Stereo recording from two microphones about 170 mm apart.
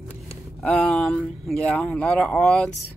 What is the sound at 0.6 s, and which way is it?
Speech, 5° left (ahead or behind).